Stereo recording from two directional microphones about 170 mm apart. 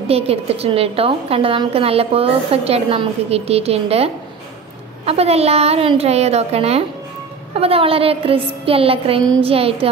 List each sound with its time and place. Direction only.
0.1 s a woman's voice: 35° right (ahead or behind)